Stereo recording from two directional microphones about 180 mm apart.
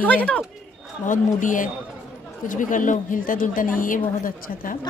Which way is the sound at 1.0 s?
45° left (ahead or behind).